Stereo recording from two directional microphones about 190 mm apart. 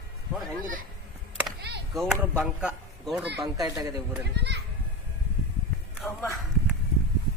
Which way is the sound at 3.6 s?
20° right (ahead or behind).